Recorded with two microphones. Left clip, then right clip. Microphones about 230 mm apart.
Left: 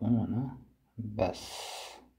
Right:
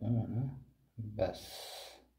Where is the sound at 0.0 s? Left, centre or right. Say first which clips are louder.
Left 7 dB; left.